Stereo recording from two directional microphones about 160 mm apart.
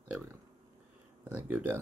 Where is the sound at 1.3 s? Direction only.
10° right (ahead or behind).